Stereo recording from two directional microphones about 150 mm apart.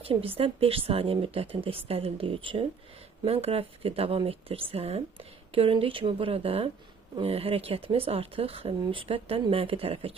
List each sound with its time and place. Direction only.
0.0 s speech: 40° right (ahead or behind)